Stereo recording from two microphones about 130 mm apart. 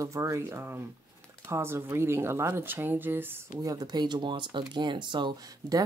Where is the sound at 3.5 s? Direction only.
30° right (ahead or behind).